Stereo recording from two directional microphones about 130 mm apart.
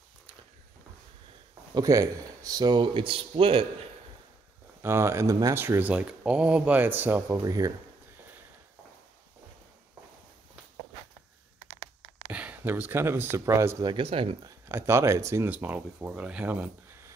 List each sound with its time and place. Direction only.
1.7 s speech: 30° right (ahead or behind); by 3.6 s 45° right (ahead or behind)
4.8 s speech: 20° right (ahead or behind)
7.3 s speech: 30° right (ahead or behind)
12.3 s speech: 10° right (ahead or behind)
13.9 s speech: 45° right (ahead or behind)
14.7 s speech: 20° right (ahead or behind)